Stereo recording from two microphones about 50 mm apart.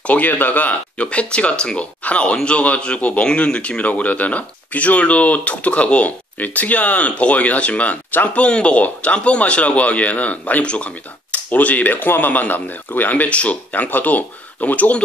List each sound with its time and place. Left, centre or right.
0.0 s speech: left
1.0 s speech: left
8.5 s speech: left